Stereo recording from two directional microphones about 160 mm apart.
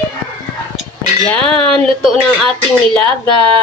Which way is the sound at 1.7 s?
5° left (ahead or behind).